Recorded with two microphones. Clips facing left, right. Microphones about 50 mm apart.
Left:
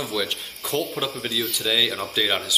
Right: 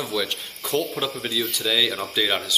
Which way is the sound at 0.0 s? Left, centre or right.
Centre.